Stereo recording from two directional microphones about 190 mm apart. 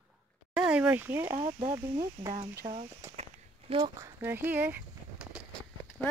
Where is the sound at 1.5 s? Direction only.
25° right (ahead or behind).